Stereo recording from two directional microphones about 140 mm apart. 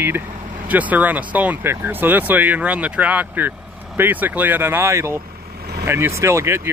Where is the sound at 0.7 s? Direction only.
10° right (ahead or behind).